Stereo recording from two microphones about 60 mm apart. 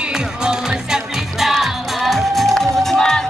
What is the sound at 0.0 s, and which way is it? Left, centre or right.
Music, centre.